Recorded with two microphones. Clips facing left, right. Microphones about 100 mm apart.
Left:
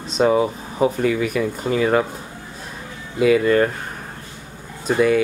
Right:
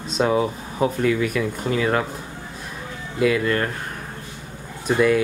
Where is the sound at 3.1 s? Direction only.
5° left (ahead or behind).